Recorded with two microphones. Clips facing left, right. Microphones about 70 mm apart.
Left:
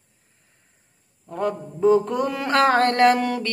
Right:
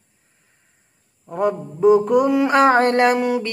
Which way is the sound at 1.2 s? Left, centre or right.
Centre.